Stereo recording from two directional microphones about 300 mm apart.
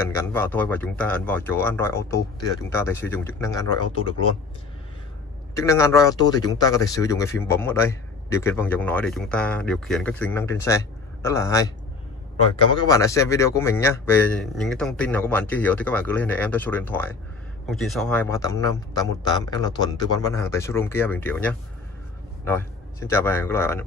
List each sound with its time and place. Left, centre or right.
0.0 s speech: centre
5.5 s speech: centre
12.7 s a man's voice: centre